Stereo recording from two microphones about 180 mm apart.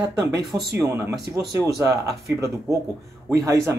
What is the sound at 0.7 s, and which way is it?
Speech, 10° right (ahead or behind).